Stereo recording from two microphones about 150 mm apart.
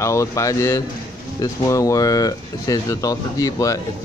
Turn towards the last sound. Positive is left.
turn(degrees=25)  # may be behind; listen again after turning